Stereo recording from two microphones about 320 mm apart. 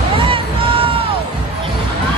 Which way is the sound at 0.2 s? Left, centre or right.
Centre.